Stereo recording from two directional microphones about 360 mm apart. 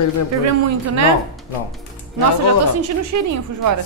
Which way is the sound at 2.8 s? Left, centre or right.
Right.